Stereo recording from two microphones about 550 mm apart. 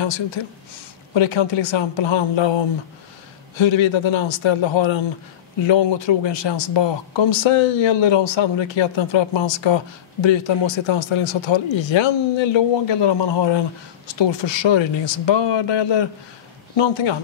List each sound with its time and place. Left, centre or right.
1.1 s speech: left
3.5 s a man's voice: left